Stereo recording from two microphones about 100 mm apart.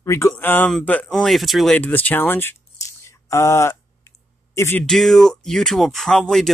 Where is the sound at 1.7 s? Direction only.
15° left (ahead or behind).